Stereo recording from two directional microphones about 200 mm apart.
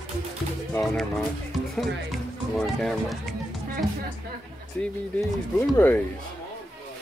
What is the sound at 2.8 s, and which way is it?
Speech, centre (ahead or behind).